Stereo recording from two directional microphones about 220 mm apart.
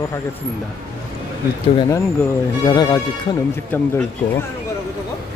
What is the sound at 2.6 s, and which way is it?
Speech, 20° left (ahead or behind).